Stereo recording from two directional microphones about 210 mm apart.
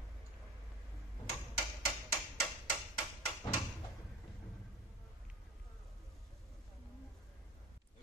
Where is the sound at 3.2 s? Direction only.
20° left (ahead or behind).